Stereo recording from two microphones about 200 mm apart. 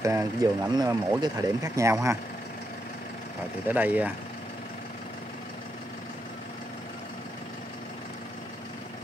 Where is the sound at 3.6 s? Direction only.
10° right (ahead or behind).